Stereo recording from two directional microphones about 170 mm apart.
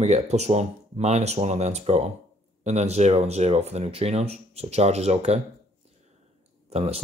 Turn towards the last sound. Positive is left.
turn(degrees=-35)  # may be behind; listen again after turning